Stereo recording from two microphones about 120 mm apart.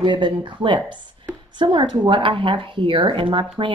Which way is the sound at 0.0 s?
40° right (ahead or behind).